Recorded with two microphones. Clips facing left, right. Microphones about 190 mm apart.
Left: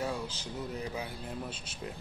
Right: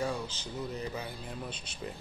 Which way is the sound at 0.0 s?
10° left (ahead or behind).